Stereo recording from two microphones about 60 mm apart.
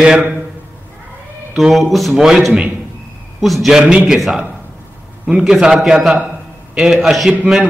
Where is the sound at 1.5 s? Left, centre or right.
Centre.